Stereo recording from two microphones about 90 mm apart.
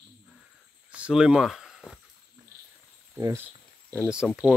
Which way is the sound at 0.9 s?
10° right (ahead or behind).